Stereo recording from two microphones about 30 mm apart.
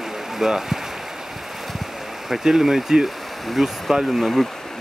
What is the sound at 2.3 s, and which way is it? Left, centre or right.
Speech, centre.